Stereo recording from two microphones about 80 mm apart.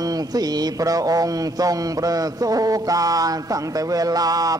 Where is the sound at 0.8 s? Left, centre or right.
Right.